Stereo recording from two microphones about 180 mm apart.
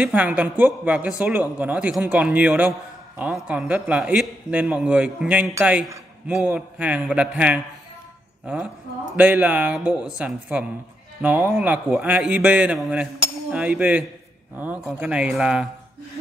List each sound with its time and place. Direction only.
0.0 s a man's voice: 10° right (ahead or behind)